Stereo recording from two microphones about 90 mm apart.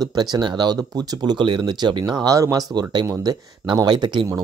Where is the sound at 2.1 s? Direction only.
40° right (ahead or behind).